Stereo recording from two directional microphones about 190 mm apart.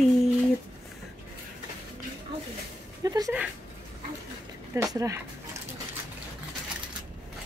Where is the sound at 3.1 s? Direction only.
20° right (ahead or behind).